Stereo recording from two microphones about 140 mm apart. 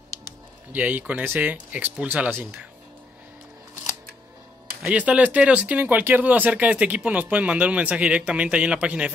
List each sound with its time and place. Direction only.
0.7 s speech: 10° right (ahead or behind)
4.8 s speech: 10° right (ahead or behind)